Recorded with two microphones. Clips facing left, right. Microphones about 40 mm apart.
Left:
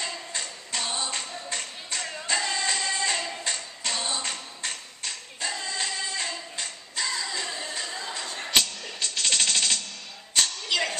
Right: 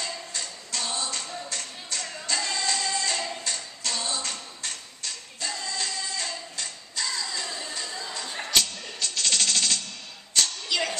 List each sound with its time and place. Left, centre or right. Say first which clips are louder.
0.0 s music: left 1 dB; left
3.2 s singing: even; left
9.0 s jackhammer: even; left
10.3 s music: left 1 dB; left